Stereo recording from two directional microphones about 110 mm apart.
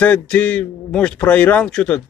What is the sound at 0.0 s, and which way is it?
Speech, 15° left (ahead or behind).